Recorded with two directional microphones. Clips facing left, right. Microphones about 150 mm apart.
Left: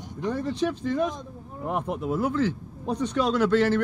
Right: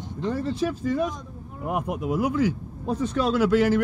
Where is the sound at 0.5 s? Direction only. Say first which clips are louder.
Right 1 dB; 5° right (ahead or behind).